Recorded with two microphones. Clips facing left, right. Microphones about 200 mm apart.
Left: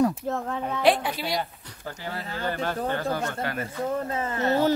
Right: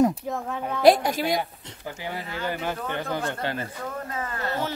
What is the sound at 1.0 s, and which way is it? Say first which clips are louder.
Speech: right 4 dB; 45° right (ahead or behind).